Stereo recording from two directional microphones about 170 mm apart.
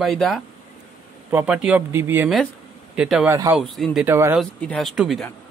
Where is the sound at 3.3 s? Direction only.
15° right (ahead or behind).